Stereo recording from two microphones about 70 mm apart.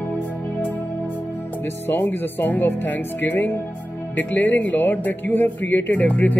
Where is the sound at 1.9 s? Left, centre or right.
Left.